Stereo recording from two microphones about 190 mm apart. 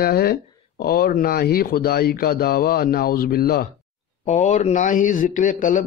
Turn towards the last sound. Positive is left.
turn(degrees=45)  # may be behind; listen again after turning